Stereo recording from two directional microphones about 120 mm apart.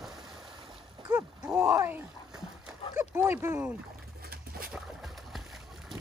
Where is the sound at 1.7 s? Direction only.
25° right (ahead or behind).